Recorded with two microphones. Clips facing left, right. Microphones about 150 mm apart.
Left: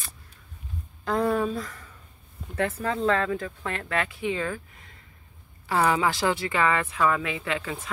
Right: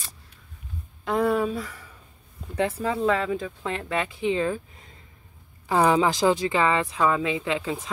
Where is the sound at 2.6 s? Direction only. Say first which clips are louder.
Right 2 dB; 15° right (ahead or behind).